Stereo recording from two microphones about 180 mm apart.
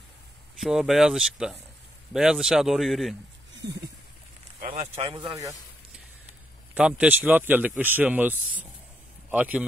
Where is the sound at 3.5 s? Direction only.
75° right (ahead or behind).